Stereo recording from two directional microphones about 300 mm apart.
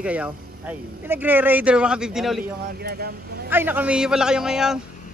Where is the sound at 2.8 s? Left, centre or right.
Right.